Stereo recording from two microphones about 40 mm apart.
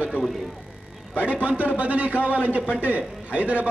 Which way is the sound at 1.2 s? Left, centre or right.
Right.